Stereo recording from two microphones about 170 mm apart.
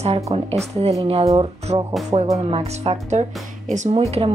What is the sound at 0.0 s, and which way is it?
Speech, 35° right (ahead or behind).